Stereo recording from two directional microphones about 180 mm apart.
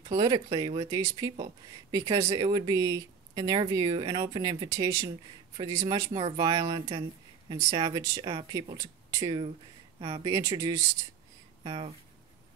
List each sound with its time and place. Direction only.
0.1 s speech: 25° right (ahead or behind)